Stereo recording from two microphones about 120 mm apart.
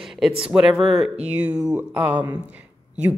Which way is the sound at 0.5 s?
5° right (ahead or behind).